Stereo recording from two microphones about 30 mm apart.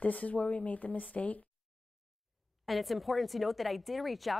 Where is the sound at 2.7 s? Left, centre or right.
Centre.